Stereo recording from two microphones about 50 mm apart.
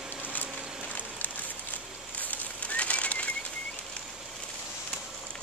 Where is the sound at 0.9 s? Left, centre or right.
Left.